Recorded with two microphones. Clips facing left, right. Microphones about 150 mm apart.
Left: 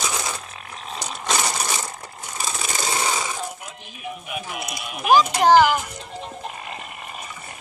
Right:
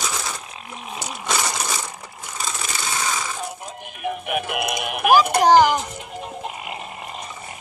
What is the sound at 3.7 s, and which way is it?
Music, 55° right (ahead or behind).